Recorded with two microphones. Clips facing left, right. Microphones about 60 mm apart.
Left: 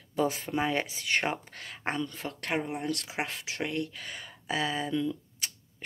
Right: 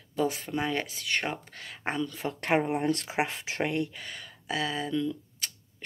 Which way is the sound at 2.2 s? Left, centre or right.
Right.